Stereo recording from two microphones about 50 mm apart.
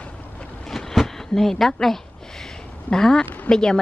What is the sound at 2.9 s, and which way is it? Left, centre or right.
Speech, centre.